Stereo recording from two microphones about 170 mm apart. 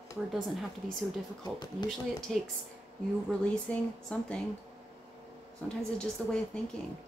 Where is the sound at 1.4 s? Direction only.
25° left (ahead or behind).